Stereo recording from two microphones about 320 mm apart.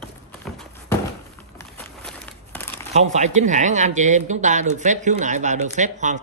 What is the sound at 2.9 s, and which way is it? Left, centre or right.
Speech, right.